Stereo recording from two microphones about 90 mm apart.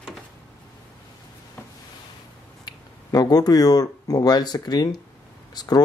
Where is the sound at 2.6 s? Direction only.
45° left (ahead or behind).